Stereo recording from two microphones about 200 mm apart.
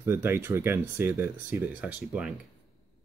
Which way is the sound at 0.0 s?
10° right (ahead or behind).